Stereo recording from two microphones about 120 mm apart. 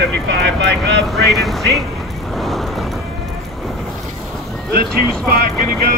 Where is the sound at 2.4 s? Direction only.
Centre (ahead or behind).